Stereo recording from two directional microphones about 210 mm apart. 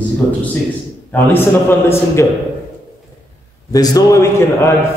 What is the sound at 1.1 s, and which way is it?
A man's voice, 10° left (ahead or behind).